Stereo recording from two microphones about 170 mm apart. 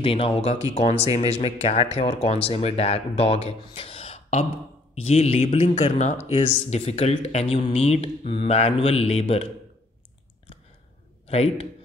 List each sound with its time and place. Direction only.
0.0 s speech: 35° left (ahead or behind)
11.2 s a man's voice: 35° left (ahead or behind)